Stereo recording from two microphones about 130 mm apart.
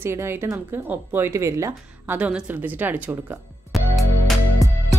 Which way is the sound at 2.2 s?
10° right (ahead or behind).